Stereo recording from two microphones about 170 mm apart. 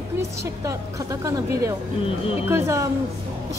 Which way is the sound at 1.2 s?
15° right (ahead or behind).